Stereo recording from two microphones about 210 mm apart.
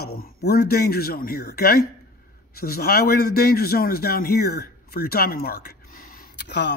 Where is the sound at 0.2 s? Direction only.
45° left (ahead or behind).